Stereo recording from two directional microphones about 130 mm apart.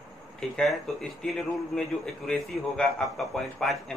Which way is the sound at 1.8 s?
5° left (ahead or behind).